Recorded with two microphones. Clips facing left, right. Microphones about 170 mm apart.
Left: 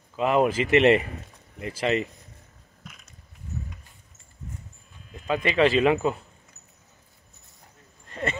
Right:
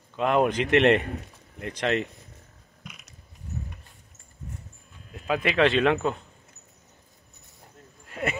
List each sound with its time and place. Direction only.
0.1 s a man's voice: 5° left (ahead or behind)
5.1 s speech: centre (ahead or behind)
8.1 s a sound: 5° right (ahead or behind)